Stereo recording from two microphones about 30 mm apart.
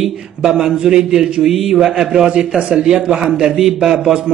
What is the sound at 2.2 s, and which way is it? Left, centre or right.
Speech, right.